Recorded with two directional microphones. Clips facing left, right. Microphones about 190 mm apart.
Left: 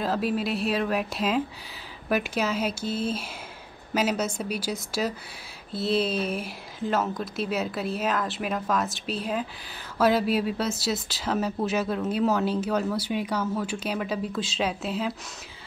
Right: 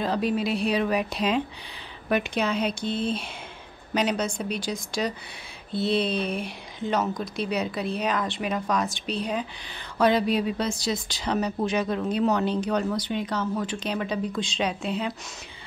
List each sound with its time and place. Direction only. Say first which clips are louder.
0.0 s speech: right 1 dB; 5° left (ahead or behind)